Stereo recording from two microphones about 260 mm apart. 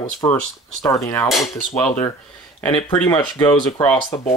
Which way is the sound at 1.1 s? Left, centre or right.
Centre.